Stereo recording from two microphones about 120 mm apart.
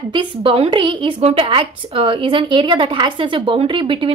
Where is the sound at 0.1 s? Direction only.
45° right (ahead or behind).